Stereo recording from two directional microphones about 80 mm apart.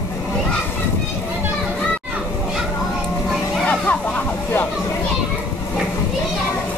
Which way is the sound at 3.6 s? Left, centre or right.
Centre.